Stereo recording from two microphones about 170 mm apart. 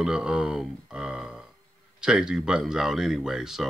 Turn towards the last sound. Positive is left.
turn(degrees=-5)  # may be behind; listen again after turning